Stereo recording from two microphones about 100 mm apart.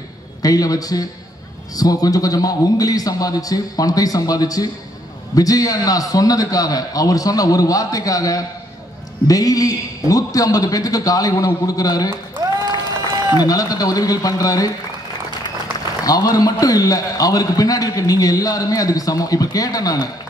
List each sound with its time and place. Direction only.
0.4 s a man's voice: 40° left (ahead or behind)
13.3 s a man's voice: 40° left (ahead or behind)
16.0 s a man's voice: 40° left (ahead or behind)